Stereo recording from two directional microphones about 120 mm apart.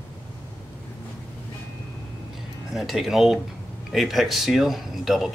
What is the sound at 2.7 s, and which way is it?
Speech, centre (ahead or behind).